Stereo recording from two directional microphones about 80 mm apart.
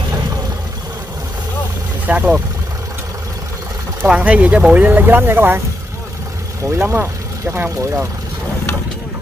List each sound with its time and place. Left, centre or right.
2.0 s speech: centre
4.0 s speech: centre
6.7 s speech: right